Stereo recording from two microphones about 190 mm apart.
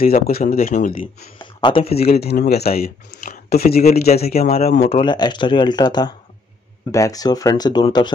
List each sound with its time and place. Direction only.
0.0 s speech: 50° left (ahead or behind)
0.9 s speech: 25° left (ahead or behind)
2.0 s speech: 55° left (ahead or behind)
4.8 s speech: 30° left (ahead or behind)